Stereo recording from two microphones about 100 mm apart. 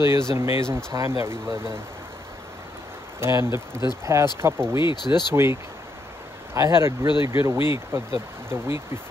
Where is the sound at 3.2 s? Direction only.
25° right (ahead or behind).